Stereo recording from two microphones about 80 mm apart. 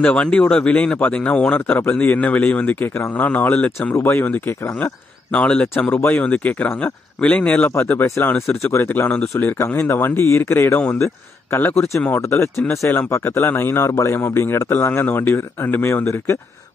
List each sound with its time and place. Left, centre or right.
0.0 s speech: centre; by 16.3 s left